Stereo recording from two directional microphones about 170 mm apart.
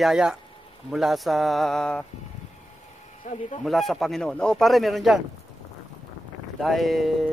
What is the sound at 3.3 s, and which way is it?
Speech, 50° left (ahead or behind).